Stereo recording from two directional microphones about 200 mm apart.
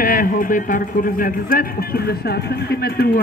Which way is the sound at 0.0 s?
45° left (ahead or behind).